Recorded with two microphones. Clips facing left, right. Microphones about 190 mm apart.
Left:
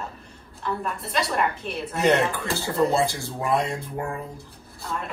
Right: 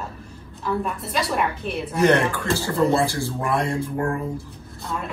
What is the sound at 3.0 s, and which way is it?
Speech, 20° left (ahead or behind).